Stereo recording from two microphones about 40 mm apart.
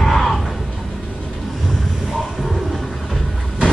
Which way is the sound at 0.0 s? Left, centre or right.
Centre.